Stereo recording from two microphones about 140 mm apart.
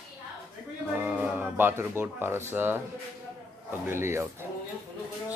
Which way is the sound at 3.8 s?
20° right (ahead or behind).